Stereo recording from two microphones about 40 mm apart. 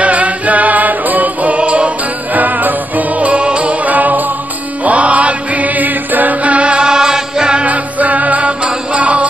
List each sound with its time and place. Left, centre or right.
0.0 s music: right
2.3 s music: right
6.9 s music: centre
7.6 s music: right